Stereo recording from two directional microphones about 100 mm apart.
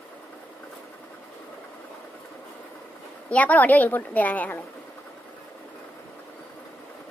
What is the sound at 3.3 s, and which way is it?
A woman's voice, 15° left (ahead or behind).